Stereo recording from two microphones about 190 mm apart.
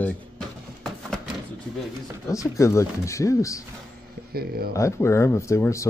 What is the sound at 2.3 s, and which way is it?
Speech, 15° left (ahead or behind).